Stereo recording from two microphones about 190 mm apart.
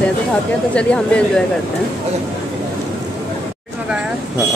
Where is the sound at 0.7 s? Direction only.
5° left (ahead or behind).